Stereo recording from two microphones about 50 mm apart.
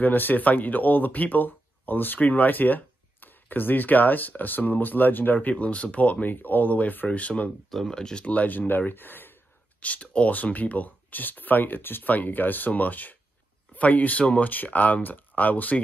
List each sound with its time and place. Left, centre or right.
0.0 s speech: left
7.7 s speech: centre
8.3 s speech: left
9.8 s speech: left